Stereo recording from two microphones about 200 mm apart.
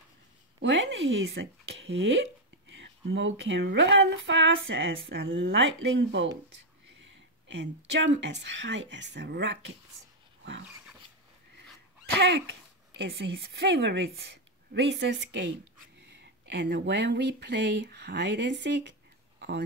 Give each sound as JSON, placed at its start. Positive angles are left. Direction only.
{"t": 0.6, "sound": "speech", "side_deg": -65}
{"t": 12.2, "sound": "speech", "side_deg": -55}